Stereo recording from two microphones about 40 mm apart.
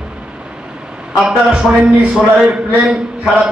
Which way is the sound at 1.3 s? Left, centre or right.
Right.